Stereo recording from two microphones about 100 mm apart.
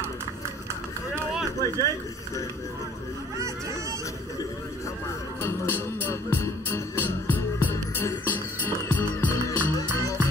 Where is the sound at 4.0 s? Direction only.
35° left (ahead or behind).